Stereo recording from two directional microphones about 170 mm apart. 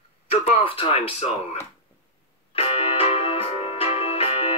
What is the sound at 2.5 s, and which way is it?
Music, 35° left (ahead or behind).